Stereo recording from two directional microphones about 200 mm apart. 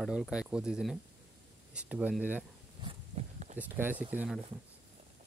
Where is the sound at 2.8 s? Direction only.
35° right (ahead or behind).